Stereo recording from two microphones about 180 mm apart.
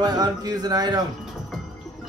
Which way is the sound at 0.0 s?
20° right (ahead or behind).